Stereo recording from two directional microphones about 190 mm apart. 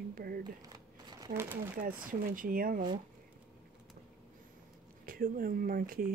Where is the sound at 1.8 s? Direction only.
50° right (ahead or behind).